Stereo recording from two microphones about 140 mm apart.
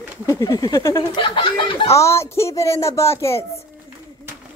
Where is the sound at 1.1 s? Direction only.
35° left (ahead or behind).